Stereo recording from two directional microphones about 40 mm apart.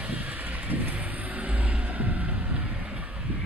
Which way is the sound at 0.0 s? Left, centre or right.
Right.